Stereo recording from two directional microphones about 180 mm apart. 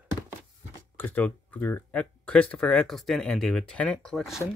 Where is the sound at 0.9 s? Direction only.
10° left (ahead or behind).